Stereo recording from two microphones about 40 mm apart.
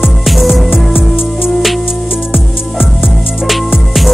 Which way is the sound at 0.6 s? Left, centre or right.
Centre.